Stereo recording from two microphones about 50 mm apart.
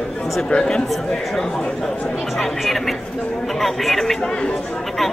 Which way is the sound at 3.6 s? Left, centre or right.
Centre.